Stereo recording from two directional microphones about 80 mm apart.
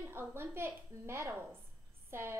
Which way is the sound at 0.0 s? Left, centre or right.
Right.